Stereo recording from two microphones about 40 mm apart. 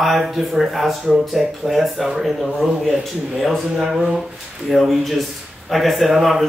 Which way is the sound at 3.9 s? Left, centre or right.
Centre.